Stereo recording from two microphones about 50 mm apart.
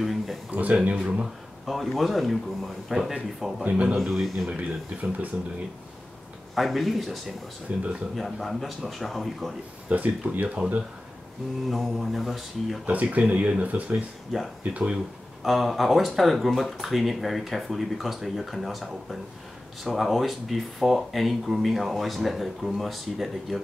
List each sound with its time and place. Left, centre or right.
0.0 s a sound: centre
0.5 s speech: right
1.7 s speech: centre
3.6 s speech: right
3.9 s speech: centre
4.5 s speech: right
6.5 s speech: centre
7.7 s speech: right
8.2 s speech: centre
9.8 s speech: right
11.7 s speech: centre
12.8 s speech: right
15.4 s speech: centre